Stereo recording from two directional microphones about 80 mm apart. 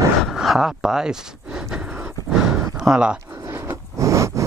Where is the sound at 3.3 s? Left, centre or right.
Right.